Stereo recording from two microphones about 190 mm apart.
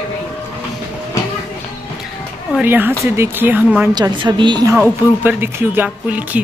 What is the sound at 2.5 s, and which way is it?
Speech, 10° right (ahead or behind).